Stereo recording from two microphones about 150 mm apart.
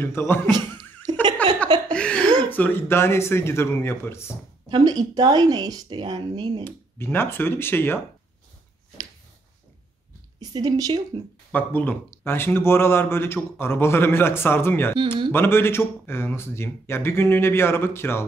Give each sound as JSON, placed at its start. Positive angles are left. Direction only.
{"t": 0.0, "sound": "speech", "side_deg": 15}
{"t": 0.5, "sound": "a sound", "side_deg": -30}
{"t": 1.4, "sound": "a sound", "side_deg": 10}
{"t": 1.9, "sound": "speech", "side_deg": 5}
{"t": 4.6, "sound": "speech", "side_deg": -30}
{"t": 6.6, "sound": "speech", "side_deg": 15}
{"t": 10.4, "sound": "speech", "side_deg": -25}
{"t": 11.5, "sound": "speech", "side_deg": 10}